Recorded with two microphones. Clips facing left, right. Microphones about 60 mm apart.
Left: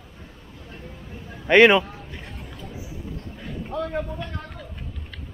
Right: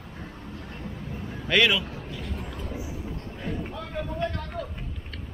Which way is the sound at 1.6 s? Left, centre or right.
Left.